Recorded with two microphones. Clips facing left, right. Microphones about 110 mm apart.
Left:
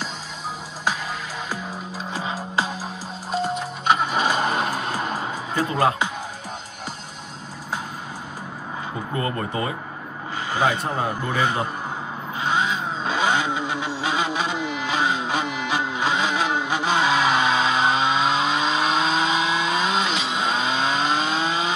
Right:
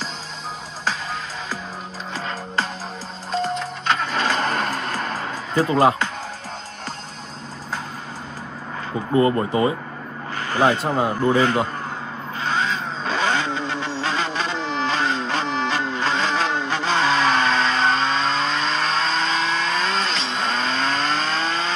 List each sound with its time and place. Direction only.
2.1 s music: 10° left (ahead or behind)
9.1 s speech: 25° right (ahead or behind)
11.3 s speech: 15° left (ahead or behind)
12.4 s vehicle: 15° left (ahead or behind)